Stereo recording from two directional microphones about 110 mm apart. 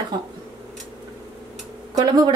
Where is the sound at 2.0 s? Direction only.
40° right (ahead or behind).